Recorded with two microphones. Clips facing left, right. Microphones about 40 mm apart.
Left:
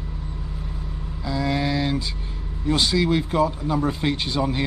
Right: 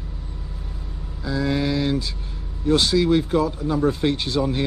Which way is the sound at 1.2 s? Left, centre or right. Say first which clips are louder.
Right 1 dB; centre.